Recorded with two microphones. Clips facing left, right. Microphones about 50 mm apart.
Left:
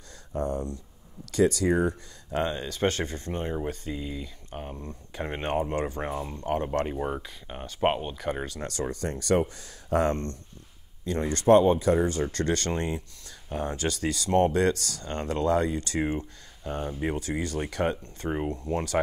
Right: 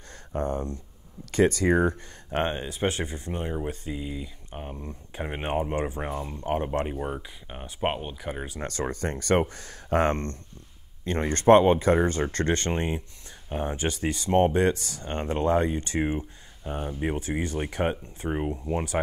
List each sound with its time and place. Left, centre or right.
0.3 s speech: right
2.6 s speech: centre
6.0 s speech: centre
6.4 s speech: right
6.9 s speech: centre
8.6 s speech: right; by 18.9 s centre